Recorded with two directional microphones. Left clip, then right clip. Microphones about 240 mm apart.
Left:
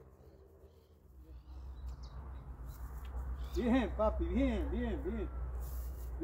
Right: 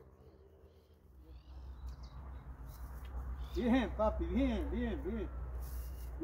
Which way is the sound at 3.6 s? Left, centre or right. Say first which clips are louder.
Even; centre.